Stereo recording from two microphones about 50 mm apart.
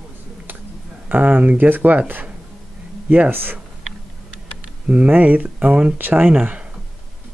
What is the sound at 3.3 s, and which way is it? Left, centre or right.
Speech, right.